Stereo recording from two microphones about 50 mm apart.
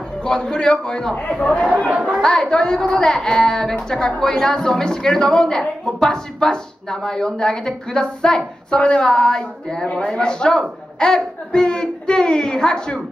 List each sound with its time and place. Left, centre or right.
0.2 s a woman's voice: centre